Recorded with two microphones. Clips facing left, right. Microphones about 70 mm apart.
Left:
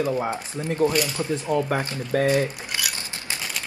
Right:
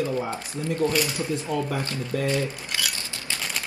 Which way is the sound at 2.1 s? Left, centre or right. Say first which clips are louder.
Left 6 dB; left.